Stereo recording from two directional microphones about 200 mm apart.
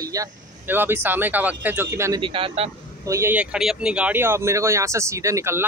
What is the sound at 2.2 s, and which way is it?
Speech, 25° right (ahead or behind).